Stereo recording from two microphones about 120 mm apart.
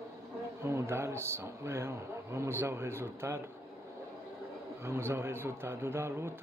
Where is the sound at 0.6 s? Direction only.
20° right (ahead or behind).